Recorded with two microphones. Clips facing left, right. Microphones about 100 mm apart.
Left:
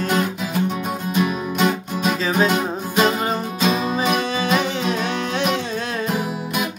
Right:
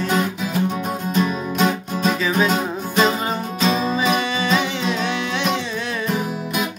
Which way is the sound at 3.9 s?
50° left (ahead or behind).